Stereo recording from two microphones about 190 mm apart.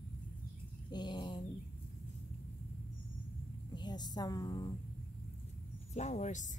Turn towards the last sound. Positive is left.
turn(degrees=35)  # may be behind; listen again after turning